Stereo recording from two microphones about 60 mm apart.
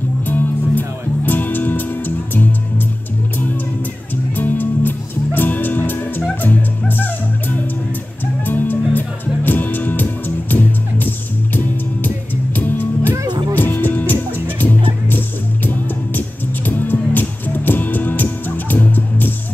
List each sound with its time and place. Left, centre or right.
0.3 s music: left
4.4 s music: left